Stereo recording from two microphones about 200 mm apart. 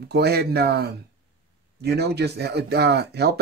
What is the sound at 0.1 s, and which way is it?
Speech, 55° right (ahead or behind).